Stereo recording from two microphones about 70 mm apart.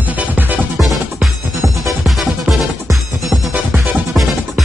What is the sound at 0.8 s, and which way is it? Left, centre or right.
Music, centre.